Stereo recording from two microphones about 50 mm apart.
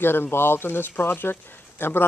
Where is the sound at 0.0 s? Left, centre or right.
Left.